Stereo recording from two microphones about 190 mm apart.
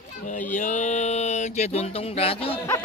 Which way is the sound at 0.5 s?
40° left (ahead or behind).